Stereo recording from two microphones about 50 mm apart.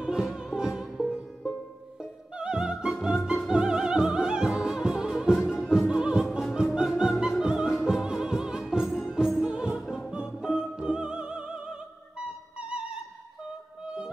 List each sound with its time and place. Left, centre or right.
0.0 s music: centre
7.0 s opera: centre
7.4 s music: centre
8.8 s music: centre
9.4 s music: centre
9.8 s music: centre
10.1 s music: centre